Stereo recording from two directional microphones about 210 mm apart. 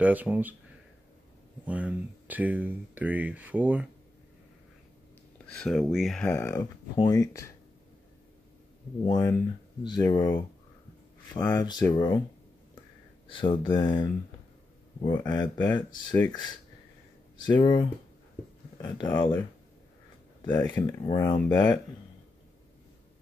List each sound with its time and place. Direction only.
0.0 s speech: 10° right (ahead or behind)
1.7 s speech: 5° right (ahead or behind)
5.6 s speech: centre (ahead or behind); by 7.4 s 15° left (ahead or behind)
9.0 s speech: 20° left (ahead or behind)
13.3 s speech: 25° left (ahead or behind)
20.6 s speech: 20° left (ahead or behind)